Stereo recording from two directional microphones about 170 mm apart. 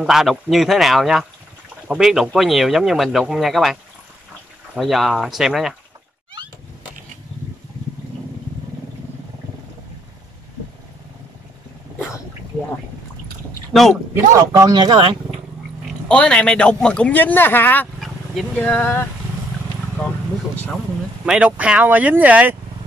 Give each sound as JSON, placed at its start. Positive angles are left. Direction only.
{"t": 0.0, "sound": "speech", "side_deg": 0}
{"t": 4.7, "sound": "speech", "side_deg": 0}
{"t": 13.7, "sound": "speech", "side_deg": 0}
{"t": 14.1, "sound": "speech", "side_deg": -15}
{"t": 16.1, "sound": "a man's voice", "side_deg": 5}
{"t": 20.5, "sound": "vehicle", "side_deg": 10}
{"t": 21.3, "sound": "speech", "side_deg": -5}